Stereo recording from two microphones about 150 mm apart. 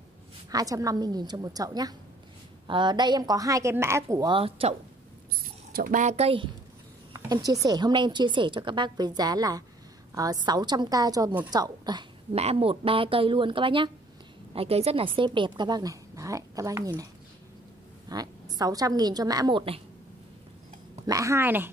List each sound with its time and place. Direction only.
0.5 s a woman's voice: 25° right (ahead or behind)
4.3 s a woman's voice: 40° right (ahead or behind)
5.7 s speech: 75° right (ahead or behind); by 6.5 s 40° right (ahead or behind)
7.2 s a woman's voice: 25° right (ahead or behind)
12.4 s a woman's voice: 40° right (ahead or behind); by 19.6 s 25° right (ahead or behind)
21.1 s a woman's voice: 20° right (ahead or behind)